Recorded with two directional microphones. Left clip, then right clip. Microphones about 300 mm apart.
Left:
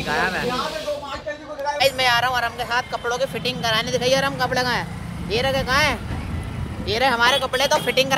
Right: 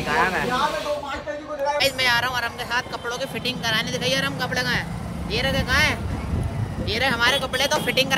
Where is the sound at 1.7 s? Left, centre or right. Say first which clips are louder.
Left 3 dB; centre.